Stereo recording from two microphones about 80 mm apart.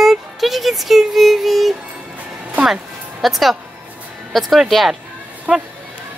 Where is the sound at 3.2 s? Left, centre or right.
Centre.